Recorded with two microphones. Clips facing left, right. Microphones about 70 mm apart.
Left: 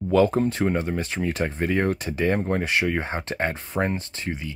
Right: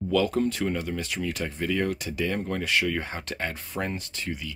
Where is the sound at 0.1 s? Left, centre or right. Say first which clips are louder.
Left 5 dB; left.